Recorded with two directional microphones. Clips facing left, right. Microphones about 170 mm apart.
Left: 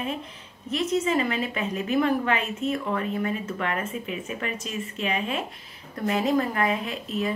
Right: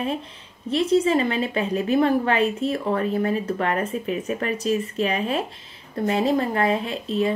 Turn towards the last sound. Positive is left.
turn(degrees=-30)  # may be behind; listen again after turning